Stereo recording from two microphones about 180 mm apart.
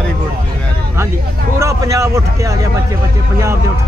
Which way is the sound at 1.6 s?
15° right (ahead or behind).